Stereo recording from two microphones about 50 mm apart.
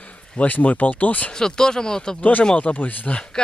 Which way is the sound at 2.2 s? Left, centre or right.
Left.